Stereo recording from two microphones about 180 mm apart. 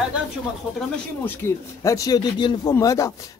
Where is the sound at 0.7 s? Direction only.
10° left (ahead or behind).